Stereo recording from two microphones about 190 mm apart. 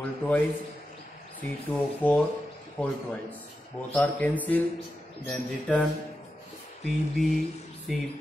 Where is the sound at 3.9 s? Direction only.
10° left (ahead or behind).